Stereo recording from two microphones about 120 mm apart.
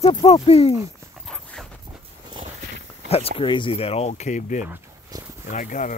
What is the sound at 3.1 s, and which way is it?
Speech, 50° left (ahead or behind).